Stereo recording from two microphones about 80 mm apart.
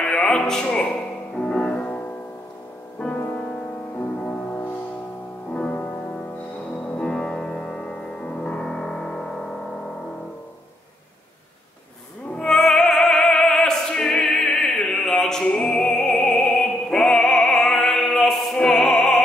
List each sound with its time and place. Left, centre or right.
0.0 s speech: centre
1.4 s music: centre
4.2 s music: centre
7.0 s music: centre
12.4 s opera: centre